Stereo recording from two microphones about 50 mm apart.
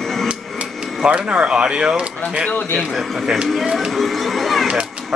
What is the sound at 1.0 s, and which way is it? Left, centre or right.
Speech, right.